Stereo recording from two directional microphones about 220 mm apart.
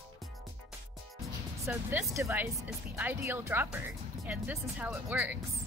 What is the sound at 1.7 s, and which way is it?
Speech, 10° right (ahead or behind).